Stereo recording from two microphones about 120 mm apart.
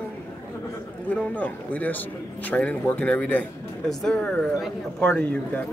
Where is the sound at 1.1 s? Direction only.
15° left (ahead or behind).